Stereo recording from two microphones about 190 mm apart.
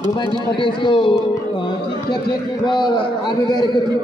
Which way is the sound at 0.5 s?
25° left (ahead or behind).